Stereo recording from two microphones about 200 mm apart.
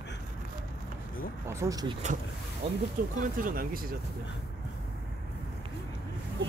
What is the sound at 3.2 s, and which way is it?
Speech, 45° right (ahead or behind).